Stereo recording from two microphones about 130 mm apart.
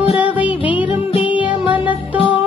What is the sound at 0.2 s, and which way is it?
Music, 10° right (ahead or behind).